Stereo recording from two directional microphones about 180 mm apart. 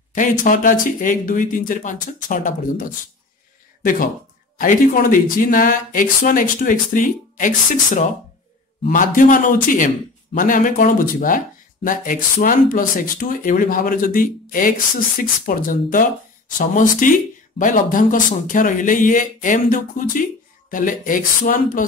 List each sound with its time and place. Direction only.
0.1 s speech: 45° left (ahead or behind)
4.6 s speech: 50° left (ahead or behind)